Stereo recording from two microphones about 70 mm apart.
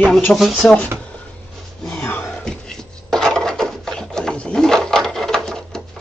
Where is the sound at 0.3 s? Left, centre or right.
Centre.